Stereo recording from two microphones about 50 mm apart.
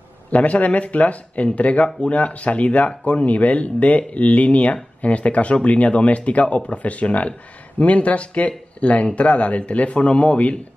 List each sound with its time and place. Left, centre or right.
0.3 s speech: left